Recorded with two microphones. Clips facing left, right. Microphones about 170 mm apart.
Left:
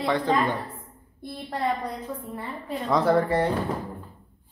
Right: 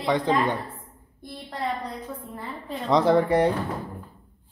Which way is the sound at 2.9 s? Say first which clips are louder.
Right 2 dB; 15° right (ahead or behind).